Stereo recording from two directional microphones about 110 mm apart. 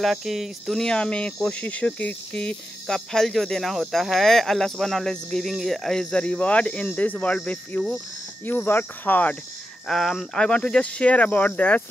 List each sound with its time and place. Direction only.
0.0 s cricket: centre (ahead or behind)
8.5 s speech: 15° left (ahead or behind)
9.8 s speech: centre (ahead or behind)